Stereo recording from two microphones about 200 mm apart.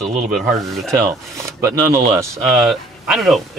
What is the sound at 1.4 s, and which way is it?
Speech, 15° right (ahead or behind).